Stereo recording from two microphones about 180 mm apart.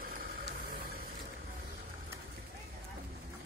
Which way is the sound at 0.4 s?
55° right (ahead or behind).